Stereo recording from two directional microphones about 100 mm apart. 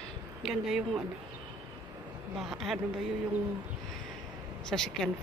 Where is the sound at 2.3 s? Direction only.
Centre (ahead or behind).